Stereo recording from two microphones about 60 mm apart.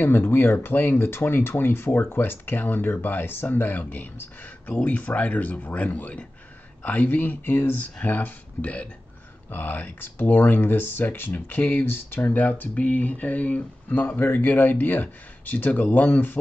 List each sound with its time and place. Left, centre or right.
0.0 s speech: left